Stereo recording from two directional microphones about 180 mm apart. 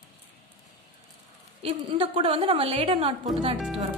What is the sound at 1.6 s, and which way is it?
A woman's voice, 30° right (ahead or behind).